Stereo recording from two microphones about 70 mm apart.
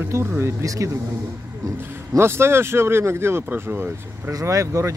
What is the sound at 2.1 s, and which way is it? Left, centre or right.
Speech, right.